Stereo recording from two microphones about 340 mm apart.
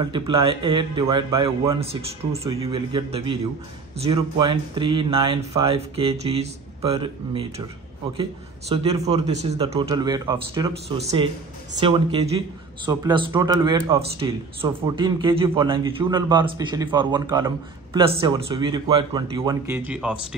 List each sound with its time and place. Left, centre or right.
0.0 s speech: centre